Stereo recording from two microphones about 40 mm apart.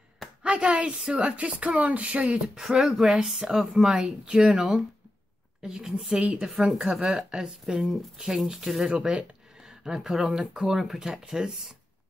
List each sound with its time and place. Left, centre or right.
0.4 s a woman's voice: right
1.2 s speech: right
2.4 s speech: centre
6.1 s speech: right
6.8 s speech: centre
8.9 s speech: right
9.7 s speech: centre
10.4 s speech: right
10.8 s speech: centre
11.1 s speech: centre